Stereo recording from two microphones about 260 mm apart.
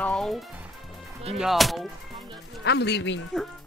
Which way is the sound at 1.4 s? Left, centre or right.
Centre.